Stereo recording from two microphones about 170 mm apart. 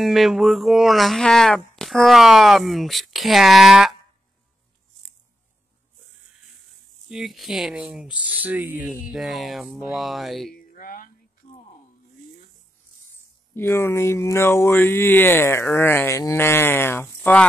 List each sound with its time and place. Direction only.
0.0 s speech: centre (ahead or behind)
7.1 s speech: centre (ahead or behind)
10.5 s a sound: 55° left (ahead or behind)
13.6 s speech: 15° left (ahead or behind)